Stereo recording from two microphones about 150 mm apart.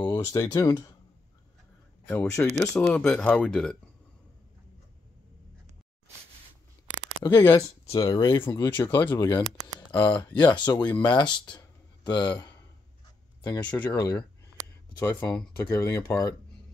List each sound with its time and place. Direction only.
0.0 s speech: 25° left (ahead or behind)
2.0 s speech: 15° left (ahead or behind)
2.8 s speech: 5° left (ahead or behind)
7.2 s speech: 25° left (ahead or behind)
8.5 s speech: 15° left (ahead or behind)
9.1 s speech: 30° left (ahead or behind)